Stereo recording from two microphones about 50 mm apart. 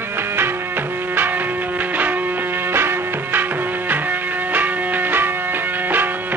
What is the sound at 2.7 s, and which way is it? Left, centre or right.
Music, right.